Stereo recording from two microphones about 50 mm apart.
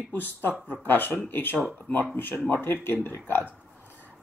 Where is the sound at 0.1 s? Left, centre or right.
Left.